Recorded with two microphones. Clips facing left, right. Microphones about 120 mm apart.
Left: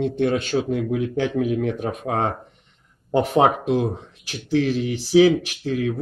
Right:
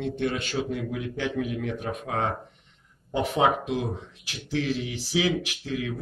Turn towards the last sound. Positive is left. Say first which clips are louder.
# left 7 dB
turn(degrees=40)  # may be behind; listen again after turning